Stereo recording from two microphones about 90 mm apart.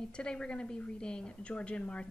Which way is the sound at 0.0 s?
10° left (ahead or behind).